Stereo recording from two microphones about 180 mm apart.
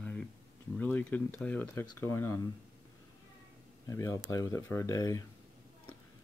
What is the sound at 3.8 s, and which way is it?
Speech, 20° left (ahead or behind).